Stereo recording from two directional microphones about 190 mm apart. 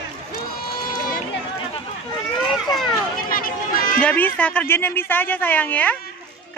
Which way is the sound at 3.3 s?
50° left (ahead or behind).